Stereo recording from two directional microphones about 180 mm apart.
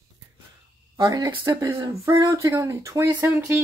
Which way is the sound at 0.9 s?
20° right (ahead or behind).